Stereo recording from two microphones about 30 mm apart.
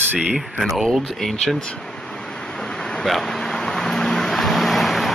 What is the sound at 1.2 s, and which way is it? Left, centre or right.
Speech, centre.